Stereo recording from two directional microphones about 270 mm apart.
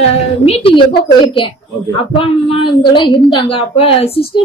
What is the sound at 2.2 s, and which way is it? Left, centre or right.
A woman's voice, centre.